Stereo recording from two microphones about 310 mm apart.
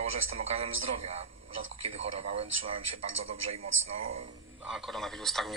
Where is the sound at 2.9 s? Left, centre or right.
Right.